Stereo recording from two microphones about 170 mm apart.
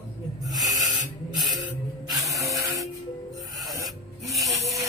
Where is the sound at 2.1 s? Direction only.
Centre (ahead or behind).